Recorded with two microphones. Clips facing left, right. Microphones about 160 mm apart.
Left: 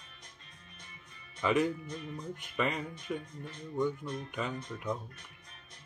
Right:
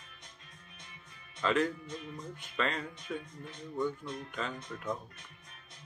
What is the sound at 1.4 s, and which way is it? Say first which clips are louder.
Speech: left 1 dB; 10° left (ahead or behind).